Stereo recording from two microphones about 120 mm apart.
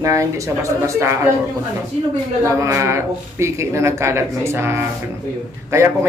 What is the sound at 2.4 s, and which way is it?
A man's voice, 25° right (ahead or behind).